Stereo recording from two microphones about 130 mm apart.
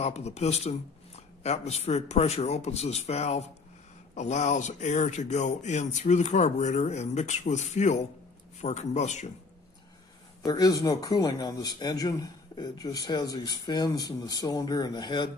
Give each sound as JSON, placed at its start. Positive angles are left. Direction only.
{"t": 0.0, "sound": "speech", "side_deg": 60}
{"t": 10.4, "sound": "a man's voice", "side_deg": 30}